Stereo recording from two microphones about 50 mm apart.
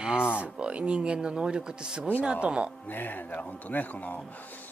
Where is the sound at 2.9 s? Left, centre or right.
Left.